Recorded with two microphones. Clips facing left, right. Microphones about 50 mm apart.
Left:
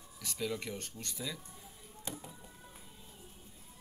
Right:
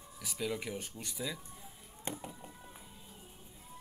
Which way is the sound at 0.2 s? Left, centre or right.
Centre.